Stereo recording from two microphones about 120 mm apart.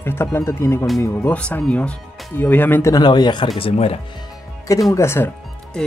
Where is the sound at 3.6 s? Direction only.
55° left (ahead or behind).